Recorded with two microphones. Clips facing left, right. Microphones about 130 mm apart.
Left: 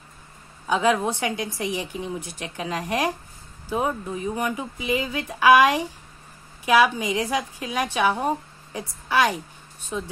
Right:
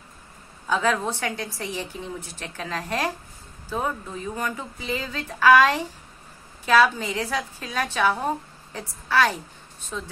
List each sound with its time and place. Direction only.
0.7 s a woman's voice: 15° left (ahead or behind)